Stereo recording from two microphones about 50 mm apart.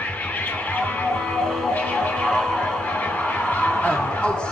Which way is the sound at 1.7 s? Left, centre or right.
Left.